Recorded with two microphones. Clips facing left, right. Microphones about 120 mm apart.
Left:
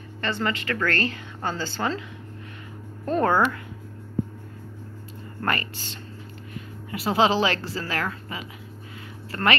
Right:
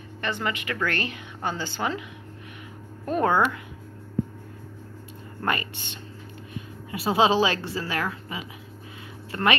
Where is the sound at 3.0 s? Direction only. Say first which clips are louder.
Left 1 dB; 10° right (ahead or behind).